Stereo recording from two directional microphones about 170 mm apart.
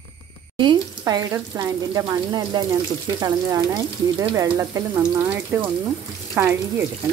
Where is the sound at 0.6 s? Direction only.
25° right (ahead or behind).